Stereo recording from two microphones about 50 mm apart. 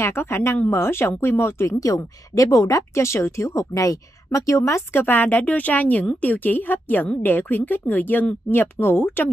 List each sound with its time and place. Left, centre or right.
0.0 s a woman's voice: left
4.3 s a woman's voice: left
4.9 s speech: left
8.5 s speech: left